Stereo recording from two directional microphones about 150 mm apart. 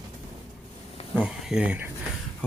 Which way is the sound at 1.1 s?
10° right (ahead or behind).